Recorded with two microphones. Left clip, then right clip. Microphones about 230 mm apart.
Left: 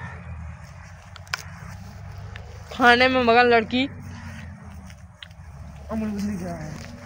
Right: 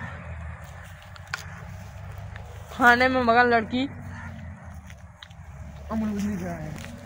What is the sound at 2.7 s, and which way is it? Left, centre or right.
Speech, left.